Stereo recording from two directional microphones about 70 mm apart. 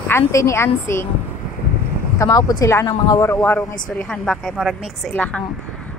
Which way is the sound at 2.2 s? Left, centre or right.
Left.